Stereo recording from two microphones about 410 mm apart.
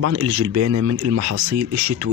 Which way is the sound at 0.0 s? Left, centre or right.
Right.